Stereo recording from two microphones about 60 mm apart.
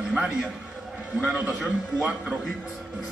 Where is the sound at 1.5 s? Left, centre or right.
Centre.